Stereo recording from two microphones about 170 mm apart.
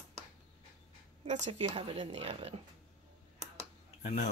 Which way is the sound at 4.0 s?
45° left (ahead or behind).